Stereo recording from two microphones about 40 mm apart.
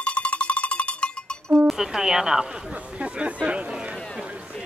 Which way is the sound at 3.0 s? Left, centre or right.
Right.